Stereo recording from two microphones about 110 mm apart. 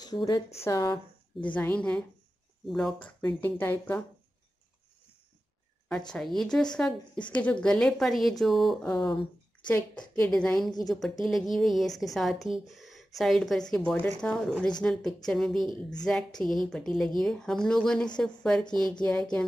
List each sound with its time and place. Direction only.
0.0 s speech: 35° left (ahead or behind)
1.5 s a woman's voice: 15° left (ahead or behind)
3.3 s speech: 15° left (ahead or behind)
6.1 s a woman's voice: 5° left (ahead or behind)